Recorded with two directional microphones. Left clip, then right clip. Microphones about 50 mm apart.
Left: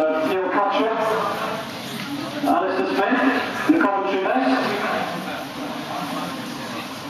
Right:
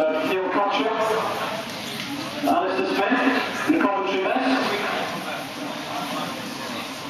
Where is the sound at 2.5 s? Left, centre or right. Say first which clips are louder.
Left 1 dB; right.